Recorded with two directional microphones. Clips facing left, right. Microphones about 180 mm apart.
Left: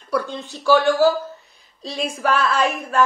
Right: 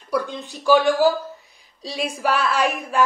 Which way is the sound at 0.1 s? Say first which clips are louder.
Left 1 dB; 15° right (ahead or behind).